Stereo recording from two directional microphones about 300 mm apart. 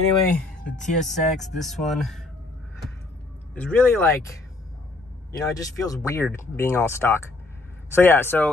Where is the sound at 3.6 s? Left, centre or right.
Centre.